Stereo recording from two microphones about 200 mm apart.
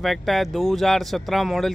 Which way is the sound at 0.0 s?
Centre (ahead or behind).